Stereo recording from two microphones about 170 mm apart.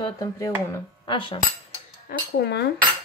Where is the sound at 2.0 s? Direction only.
75° left (ahead or behind).